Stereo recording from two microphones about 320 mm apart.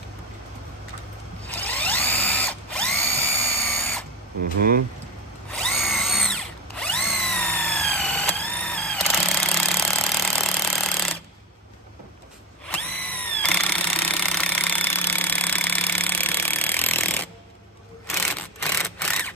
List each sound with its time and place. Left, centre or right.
1.5 s drill: centre
4.4 s speech: right
5.5 s drill: centre
12.6 s a sound: centre